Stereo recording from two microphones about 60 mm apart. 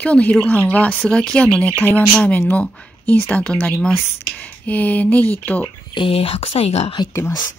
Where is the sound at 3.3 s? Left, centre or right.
Centre.